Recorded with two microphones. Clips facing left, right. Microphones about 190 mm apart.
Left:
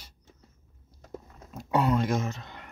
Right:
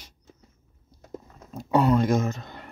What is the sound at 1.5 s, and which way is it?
Speech, 30° right (ahead or behind).